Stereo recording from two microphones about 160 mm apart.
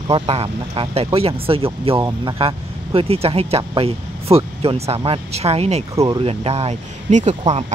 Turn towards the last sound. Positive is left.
turn(degrees=-45)  # may be behind; listen again after turning